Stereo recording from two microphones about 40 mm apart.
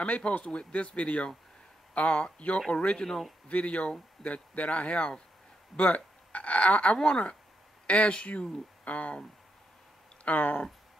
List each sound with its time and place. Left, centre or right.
0.0 s speech: left
3.1 s a man's voice: centre
3.4 s speech: left
7.0 s speech: left
10.2 s speech: left